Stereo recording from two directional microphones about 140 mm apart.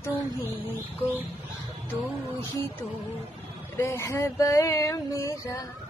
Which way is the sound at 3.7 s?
20° left (ahead or behind).